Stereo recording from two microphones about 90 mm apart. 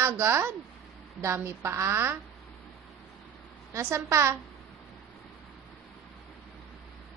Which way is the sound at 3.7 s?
30° right (ahead or behind).